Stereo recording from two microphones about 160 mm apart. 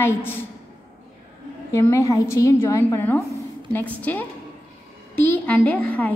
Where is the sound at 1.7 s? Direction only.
20° left (ahead or behind).